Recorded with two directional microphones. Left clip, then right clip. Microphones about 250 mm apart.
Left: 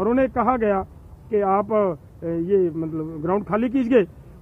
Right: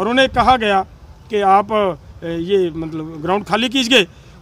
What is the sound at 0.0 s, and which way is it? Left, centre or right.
Speech, centre.